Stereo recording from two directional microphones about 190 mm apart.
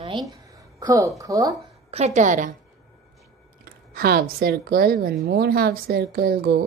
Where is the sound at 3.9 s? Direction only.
55° right (ahead or behind).